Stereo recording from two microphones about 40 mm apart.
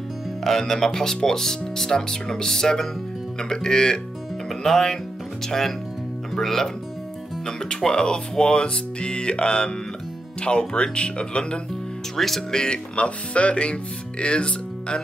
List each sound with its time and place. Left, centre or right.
0.4 s speech: centre; by 11.6 s left
12.2 s speech: centre; by 15.0 s left